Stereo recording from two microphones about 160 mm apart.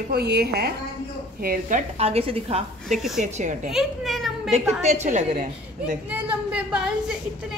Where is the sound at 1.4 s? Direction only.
60° right (ahead or behind).